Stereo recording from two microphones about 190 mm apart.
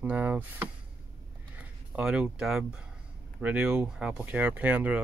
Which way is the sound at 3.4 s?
5° right (ahead or behind).